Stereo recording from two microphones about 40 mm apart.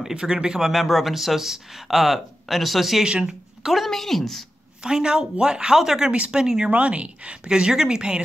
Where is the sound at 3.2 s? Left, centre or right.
Centre.